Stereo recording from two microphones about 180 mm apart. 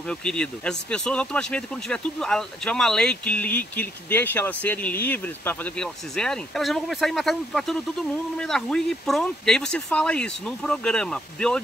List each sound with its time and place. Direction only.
0.1 s speech: 5° left (ahead or behind)